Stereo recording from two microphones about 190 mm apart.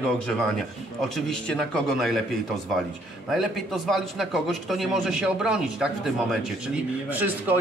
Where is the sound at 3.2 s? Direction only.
Centre (ahead or behind).